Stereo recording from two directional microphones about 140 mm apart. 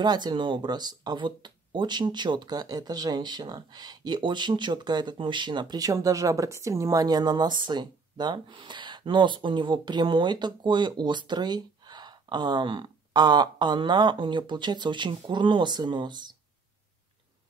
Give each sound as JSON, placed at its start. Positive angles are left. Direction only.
{"t": 0.0, "sound": "speech", "side_deg": -30}